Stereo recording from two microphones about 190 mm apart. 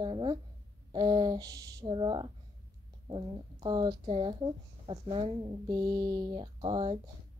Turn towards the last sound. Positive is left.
turn(degrees=-25)  # may be behind; listen again after turning